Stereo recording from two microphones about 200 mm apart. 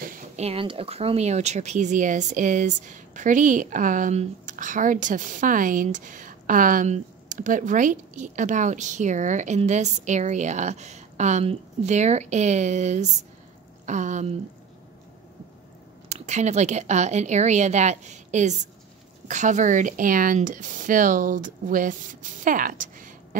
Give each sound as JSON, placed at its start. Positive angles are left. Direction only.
{"t": 0.0, "sound": "a sound", "side_deg": -45}
{"t": 0.5, "sound": "speech", "side_deg": -25}
{"t": 16.1, "sound": "speech", "side_deg": -35}